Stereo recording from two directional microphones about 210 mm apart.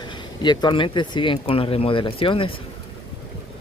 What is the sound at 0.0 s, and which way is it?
Speech, 20° left (ahead or behind).